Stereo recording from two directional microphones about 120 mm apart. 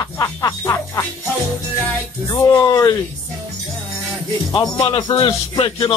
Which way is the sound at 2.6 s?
30° left (ahead or behind).